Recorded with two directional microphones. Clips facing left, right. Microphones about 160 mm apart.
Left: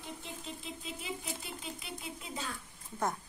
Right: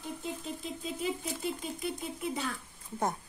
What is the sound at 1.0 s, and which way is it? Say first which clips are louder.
Speech: right 7 dB; 45° right (ahead or behind).